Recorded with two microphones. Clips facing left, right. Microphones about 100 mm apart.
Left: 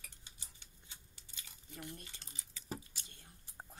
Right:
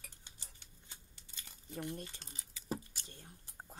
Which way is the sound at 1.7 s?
35° right (ahead or behind).